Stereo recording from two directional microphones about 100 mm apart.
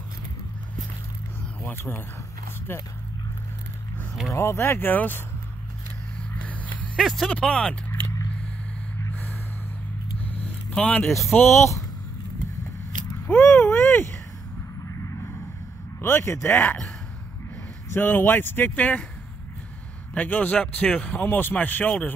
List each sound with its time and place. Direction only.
1.6 s speech: 20° left (ahead or behind)
4.3 s speech: 30° left (ahead or behind)
6.4 s a sound: 15° left (ahead or behind)
7.0 s speech: centre (ahead or behind)
10.3 s vehicle: 15° left (ahead or behind)
11.1 s speech: centre (ahead or behind)
11.3 s speech: 25° left (ahead or behind)
13.3 s speech: 15° left (ahead or behind)
16.0 s speech: 25° left (ahead or behind)
20.2 s speech: 15° left (ahead or behind)